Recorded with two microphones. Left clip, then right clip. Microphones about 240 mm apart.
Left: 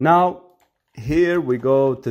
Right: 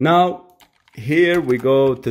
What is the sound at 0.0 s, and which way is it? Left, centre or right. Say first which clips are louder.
Speech: even; centre.